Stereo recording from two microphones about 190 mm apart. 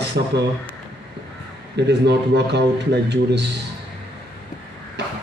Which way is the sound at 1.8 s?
65° right (ahead or behind).